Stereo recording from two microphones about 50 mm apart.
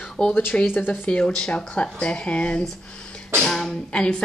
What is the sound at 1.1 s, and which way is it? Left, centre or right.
Speech, centre.